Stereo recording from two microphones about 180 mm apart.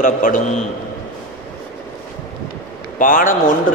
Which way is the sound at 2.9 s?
50° left (ahead or behind).